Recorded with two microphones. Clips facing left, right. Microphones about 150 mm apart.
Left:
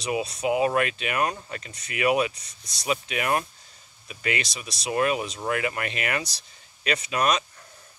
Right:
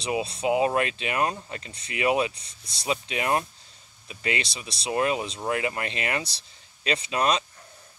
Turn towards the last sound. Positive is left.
turn(degrees=-25)  # may be behind; listen again after turning